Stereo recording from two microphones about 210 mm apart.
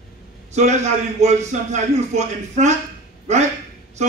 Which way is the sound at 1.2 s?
35° right (ahead or behind).